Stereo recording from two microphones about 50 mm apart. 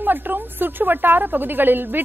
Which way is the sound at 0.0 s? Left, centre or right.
Right.